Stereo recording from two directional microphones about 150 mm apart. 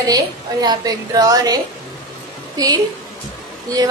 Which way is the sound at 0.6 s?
25° right (ahead or behind).